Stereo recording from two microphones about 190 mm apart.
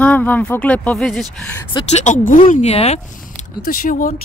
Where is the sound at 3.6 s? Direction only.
50° left (ahead or behind).